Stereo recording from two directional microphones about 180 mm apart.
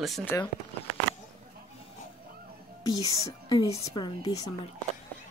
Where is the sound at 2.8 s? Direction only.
20° left (ahead or behind).